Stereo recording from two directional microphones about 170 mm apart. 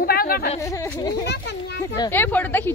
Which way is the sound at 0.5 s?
20° left (ahead or behind).